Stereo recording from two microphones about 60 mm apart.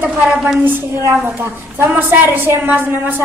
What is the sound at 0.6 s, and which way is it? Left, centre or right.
Speech, right.